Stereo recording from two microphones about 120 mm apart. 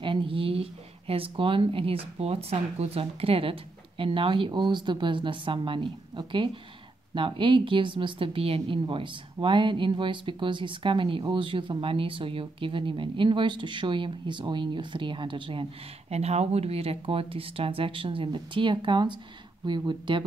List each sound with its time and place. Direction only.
0.0 s speech: 45° right (ahead or behind)
16.1 s speech: 60° right (ahead or behind); by 20.2 s 40° right (ahead or behind)